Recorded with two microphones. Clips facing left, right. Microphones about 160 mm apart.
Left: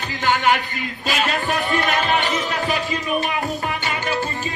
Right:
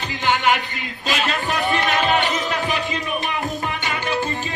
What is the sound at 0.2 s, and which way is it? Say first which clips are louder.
A man's voice: left 1 dB; 40° left (ahead or behind).